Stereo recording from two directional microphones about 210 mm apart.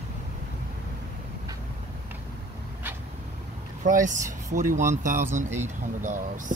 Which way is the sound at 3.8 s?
35° right (ahead or behind).